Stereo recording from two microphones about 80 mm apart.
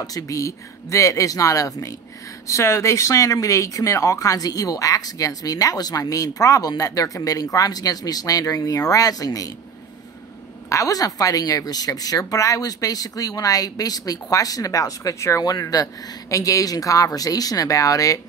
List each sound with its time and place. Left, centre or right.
0.0 s a woman's voice: left
10.7 s a woman's voice: left
15.4 s a woman's voice: left